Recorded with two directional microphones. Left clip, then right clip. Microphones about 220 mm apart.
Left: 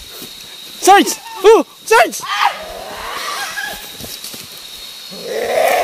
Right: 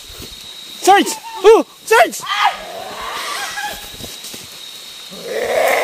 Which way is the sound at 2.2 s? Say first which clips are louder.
Even; 10° left (ahead or behind).